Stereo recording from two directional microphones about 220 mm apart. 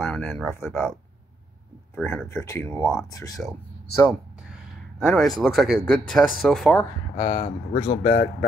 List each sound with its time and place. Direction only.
0.0 s speech: 10° left (ahead or behind)
2.0 s speech: 10° left (ahead or behind)
4.9 s speech: centre (ahead or behind)
7.2 s speech: 20° left (ahead or behind)
7.7 s a man's voice: 35° left (ahead or behind)
8.0 s speech: 50° left (ahead or behind)